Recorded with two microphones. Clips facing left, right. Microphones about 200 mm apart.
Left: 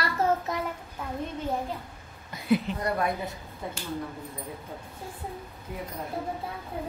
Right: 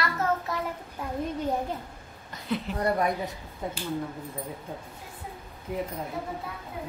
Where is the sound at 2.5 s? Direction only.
10° left (ahead or behind).